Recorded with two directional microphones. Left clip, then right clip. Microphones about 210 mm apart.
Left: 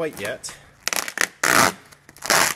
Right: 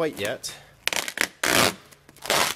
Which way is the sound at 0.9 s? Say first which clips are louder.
Left 4 dB; 15° right (ahead or behind).